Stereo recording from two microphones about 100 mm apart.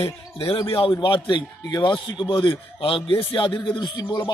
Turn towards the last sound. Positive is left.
turn(degrees=45)  # may be behind; listen again after turning